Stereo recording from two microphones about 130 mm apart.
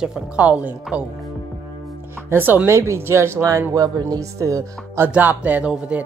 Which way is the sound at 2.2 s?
15° right (ahead or behind).